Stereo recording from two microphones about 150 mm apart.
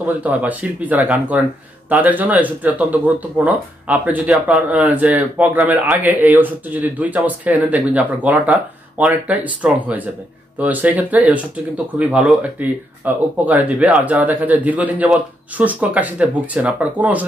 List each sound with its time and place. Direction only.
0.0 s speech: 10° right (ahead or behind)